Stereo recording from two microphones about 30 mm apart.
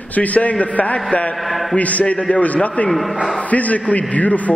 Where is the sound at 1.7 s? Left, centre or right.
Left.